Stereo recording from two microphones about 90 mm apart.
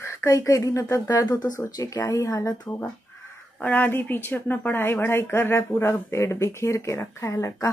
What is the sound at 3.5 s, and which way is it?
Speech, 15° left (ahead or behind).